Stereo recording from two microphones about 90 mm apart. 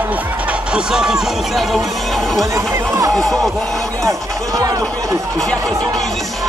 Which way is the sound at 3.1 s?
5° left (ahead or behind).